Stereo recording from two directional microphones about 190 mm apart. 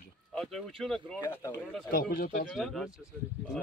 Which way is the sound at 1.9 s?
55° left (ahead or behind).